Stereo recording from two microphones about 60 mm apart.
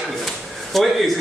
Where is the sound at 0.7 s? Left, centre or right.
Centre.